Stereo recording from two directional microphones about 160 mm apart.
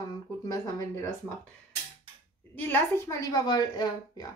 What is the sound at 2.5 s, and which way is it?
Speech, 10° left (ahead or behind).